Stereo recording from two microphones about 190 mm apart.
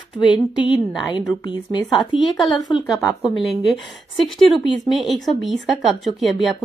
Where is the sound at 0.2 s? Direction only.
25° left (ahead or behind).